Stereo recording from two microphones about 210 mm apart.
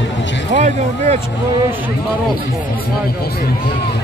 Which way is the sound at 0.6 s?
30° right (ahead or behind).